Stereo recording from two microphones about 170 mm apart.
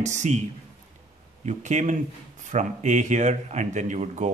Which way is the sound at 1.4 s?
45° right (ahead or behind).